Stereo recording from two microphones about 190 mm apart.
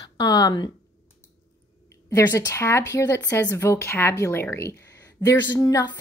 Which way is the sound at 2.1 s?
15° left (ahead or behind).